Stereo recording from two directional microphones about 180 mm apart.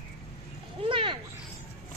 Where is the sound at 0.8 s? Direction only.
30° right (ahead or behind).